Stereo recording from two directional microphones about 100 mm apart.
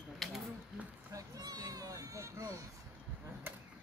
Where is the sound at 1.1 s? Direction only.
40° right (ahead or behind).